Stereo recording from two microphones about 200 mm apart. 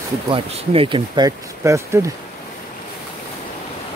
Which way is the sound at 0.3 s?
25° right (ahead or behind).